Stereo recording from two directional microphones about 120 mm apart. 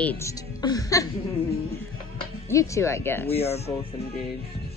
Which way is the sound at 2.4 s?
25° left (ahead or behind).